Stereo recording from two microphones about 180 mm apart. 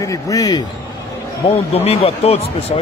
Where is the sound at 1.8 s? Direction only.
35° left (ahead or behind).